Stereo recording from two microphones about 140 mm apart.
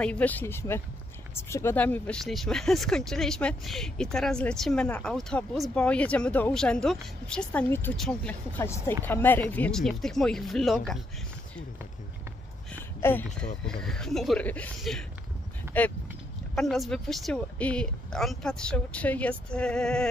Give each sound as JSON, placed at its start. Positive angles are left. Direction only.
{"t": 0.0, "sound": "speech", "side_deg": 10}
{"t": 8.5, "sound": "speech", "side_deg": 20}
{"t": 13.0, "sound": "speech", "side_deg": 10}
{"t": 16.5, "sound": "speech", "side_deg": 0}